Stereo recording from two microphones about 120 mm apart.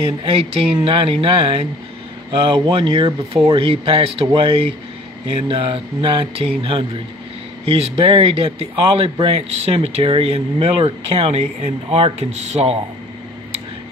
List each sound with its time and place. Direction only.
0.8 s speech: 50° right (ahead or behind)